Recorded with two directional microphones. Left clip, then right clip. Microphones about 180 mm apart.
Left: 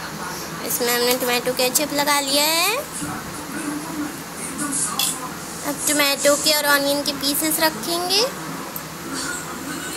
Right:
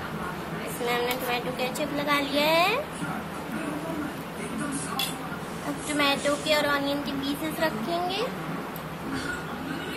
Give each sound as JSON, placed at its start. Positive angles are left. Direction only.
{"t": 0.8, "sound": "speech", "side_deg": 35}
{"t": 5.9, "sound": "speech", "side_deg": 30}